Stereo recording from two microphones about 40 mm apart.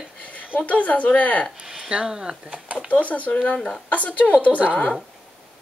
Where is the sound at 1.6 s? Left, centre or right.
Centre.